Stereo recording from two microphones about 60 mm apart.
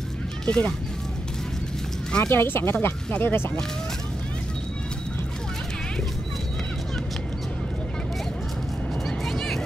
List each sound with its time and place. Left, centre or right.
0.5 s speech: centre
2.2 s speech: left
9.0 s music: centre